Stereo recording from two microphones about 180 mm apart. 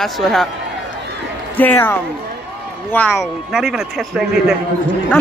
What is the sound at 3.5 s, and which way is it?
Speech, 5° right (ahead or behind).